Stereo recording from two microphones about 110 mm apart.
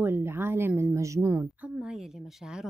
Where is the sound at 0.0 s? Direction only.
20° right (ahead or behind).